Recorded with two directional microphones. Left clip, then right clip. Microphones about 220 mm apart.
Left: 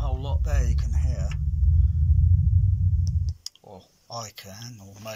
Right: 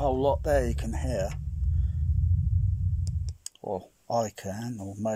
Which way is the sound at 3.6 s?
35° right (ahead or behind).